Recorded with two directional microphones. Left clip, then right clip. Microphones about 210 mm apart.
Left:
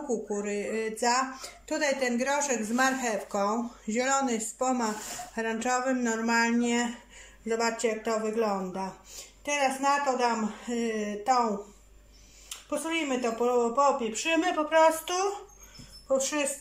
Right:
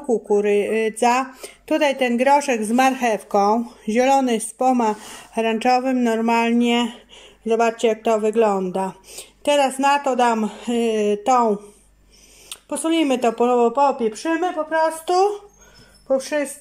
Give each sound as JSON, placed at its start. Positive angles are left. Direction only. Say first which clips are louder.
{"t": 0.1, "sound": "speech", "louder": "right 14 dB", "side_deg": -35}
{"t": 12.4, "sound": "speech", "louder": "right 9 dB", "side_deg": -55}